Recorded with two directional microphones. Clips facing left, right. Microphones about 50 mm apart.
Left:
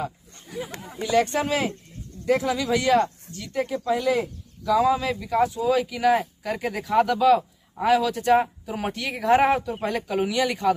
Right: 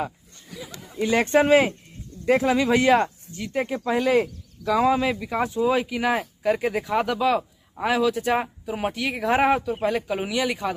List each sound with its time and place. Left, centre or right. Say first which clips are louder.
1.0 s speech: right 3 dB; right; by 5.4 s centre
5.4 s a man's voice: left 1 dB; right; by 10.7 s centre